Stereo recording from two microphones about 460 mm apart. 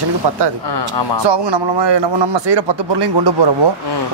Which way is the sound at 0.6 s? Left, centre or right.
Left.